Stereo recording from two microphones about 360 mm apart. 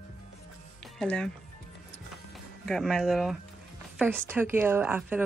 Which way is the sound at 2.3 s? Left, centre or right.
Centre.